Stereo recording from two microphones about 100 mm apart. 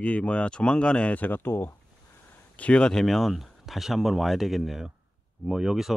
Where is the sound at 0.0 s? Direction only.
10° left (ahead or behind).